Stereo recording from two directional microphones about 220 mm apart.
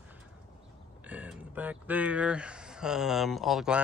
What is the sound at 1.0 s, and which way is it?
Speech, 5° right (ahead or behind).